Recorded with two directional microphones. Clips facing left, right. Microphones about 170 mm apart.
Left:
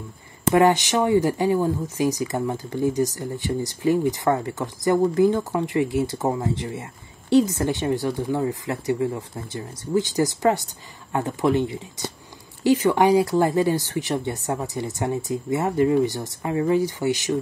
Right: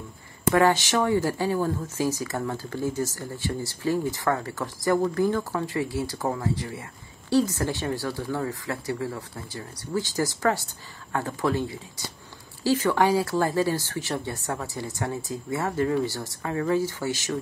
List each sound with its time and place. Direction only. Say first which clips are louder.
0.6 s speech: left 3 dB; 20° left (ahead or behind)